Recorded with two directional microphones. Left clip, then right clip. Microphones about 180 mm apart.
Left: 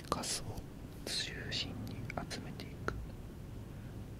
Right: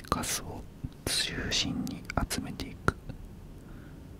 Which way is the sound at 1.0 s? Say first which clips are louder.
Right 8 dB; 90° right.